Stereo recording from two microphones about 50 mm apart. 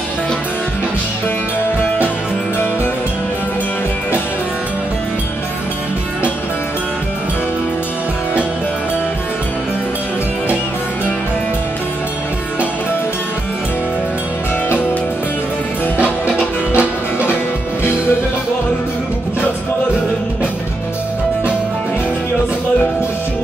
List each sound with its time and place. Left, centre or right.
16.0 s music: right